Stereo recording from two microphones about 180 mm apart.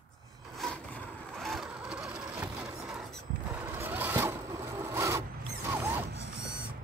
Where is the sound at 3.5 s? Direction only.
10° right (ahead or behind).